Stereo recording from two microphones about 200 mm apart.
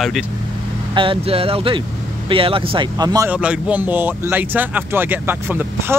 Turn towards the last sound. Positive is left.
turn(degrees=-10)  # may be behind; listen again after turning